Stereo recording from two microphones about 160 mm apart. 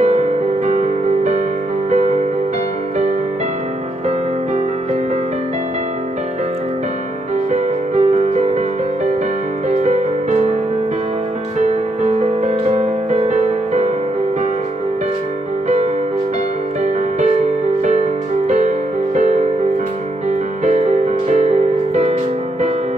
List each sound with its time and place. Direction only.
0.0 s music: 50° right (ahead or behind)
7.5 s music: 50° right (ahead or behind)
9.7 s music: 45° right (ahead or behind)
11.6 s music: 45° right (ahead or behind)
16.8 s music: 45° right (ahead or behind)
18.5 s music: 50° right (ahead or behind)